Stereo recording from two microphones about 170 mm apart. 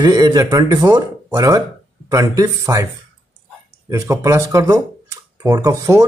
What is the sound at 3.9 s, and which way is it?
Speech, 20° right (ahead or behind).